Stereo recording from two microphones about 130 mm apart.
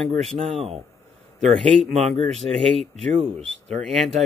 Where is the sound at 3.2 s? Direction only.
55° right (ahead or behind).